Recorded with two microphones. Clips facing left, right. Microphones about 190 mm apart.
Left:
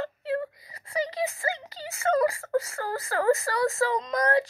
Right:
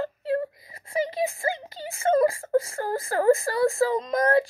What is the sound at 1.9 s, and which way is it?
Speech, 30° right (ahead or behind).